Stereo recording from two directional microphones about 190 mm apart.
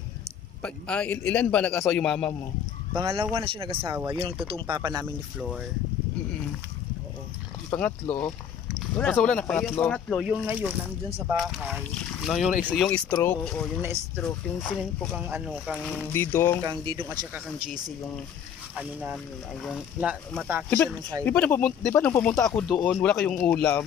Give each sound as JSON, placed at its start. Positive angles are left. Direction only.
{"t": 0.6, "sound": "speech", "side_deg": 5}
{"t": 2.9, "sound": "speech", "side_deg": -25}
{"t": 5.4, "sound": "speech", "side_deg": -5}
{"t": 7.7, "sound": "speech", "side_deg": 10}
{"t": 10.2, "sound": "speech", "side_deg": -5}
{"t": 16.1, "sound": "speech", "side_deg": 15}
{"t": 16.6, "sound": "speech", "side_deg": -20}
{"t": 18.8, "sound": "speech", "side_deg": -5}
{"t": 21.2, "sound": "speech", "side_deg": 10}